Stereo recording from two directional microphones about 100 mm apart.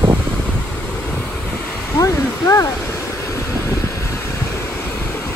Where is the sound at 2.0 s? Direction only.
35° left (ahead or behind).